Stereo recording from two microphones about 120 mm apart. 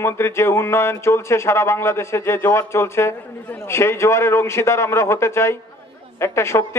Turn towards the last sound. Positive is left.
turn(degrees=20)  # may be behind; listen again after turning